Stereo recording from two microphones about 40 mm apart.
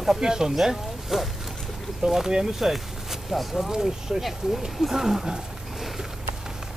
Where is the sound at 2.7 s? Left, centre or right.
Centre.